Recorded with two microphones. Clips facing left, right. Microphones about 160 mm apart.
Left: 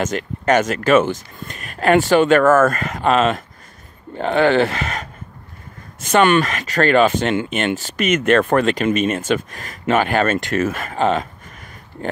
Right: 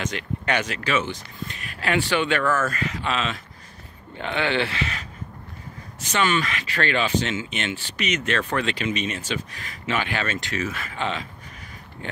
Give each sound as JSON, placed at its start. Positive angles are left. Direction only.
{"t": 0.0, "sound": "speech", "side_deg": 45}